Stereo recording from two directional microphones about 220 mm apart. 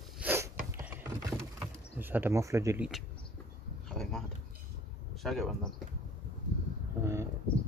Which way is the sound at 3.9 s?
Centre (ahead or behind).